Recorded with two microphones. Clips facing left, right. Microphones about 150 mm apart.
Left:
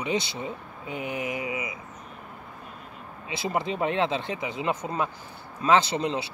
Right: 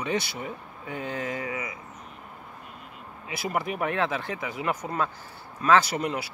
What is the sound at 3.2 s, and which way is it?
Speech, 25° left (ahead or behind).